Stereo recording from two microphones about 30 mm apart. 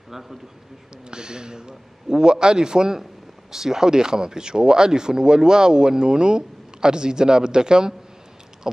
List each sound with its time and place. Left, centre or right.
0.1 s speech: centre
1.1 s speech: right